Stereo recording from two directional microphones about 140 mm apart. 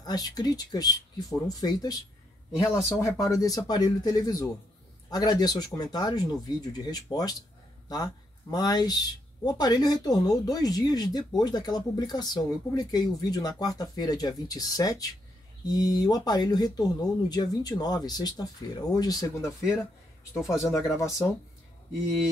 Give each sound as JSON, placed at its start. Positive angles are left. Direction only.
{"t": 0.0, "sound": "speech", "side_deg": 30}